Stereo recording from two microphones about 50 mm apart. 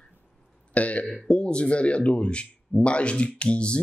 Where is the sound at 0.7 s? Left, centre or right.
Left.